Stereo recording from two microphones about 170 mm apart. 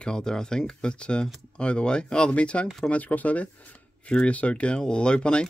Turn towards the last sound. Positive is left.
turn(degrees=5)  # may be behind; listen again after turning